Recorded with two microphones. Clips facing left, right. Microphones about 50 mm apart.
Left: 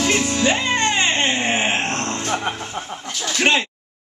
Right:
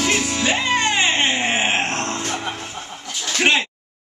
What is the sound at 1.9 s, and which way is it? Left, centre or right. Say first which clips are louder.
Music: even; right.